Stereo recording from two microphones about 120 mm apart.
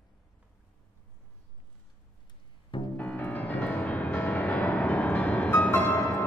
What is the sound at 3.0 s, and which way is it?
Music, 10° left (ahead or behind).